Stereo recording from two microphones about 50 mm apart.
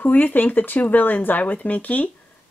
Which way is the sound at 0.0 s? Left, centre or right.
Left.